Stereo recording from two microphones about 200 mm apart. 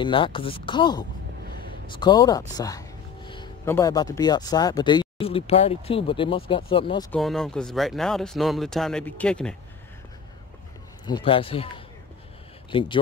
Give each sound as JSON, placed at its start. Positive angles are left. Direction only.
{"t": 0.0, "sound": "speech", "side_deg": 25}
{"t": 1.5, "sound": "a sound", "side_deg": -50}
{"t": 1.9, "sound": "speech", "side_deg": 20}
{"t": 7.1, "sound": "speech", "side_deg": 0}
{"t": 11.1, "sound": "speech", "side_deg": 25}
{"t": 12.7, "sound": "speech", "side_deg": 25}